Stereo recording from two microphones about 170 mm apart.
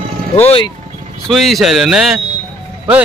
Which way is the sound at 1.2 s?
Centre (ahead or behind).